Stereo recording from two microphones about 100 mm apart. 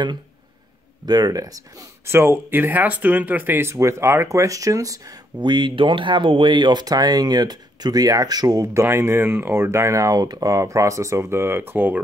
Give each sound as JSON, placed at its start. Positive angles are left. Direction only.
{"t": 1.0, "sound": "speech", "side_deg": -40}
{"t": 2.1, "sound": "speech", "side_deg": -20}
{"t": 5.4, "sound": "speech", "side_deg": -50}
{"t": 8.8, "sound": "speech", "side_deg": -25}